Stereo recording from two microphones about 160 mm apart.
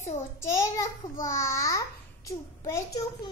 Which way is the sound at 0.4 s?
20° left (ahead or behind).